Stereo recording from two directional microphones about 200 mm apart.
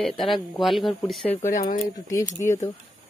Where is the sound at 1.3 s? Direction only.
40° left (ahead or behind).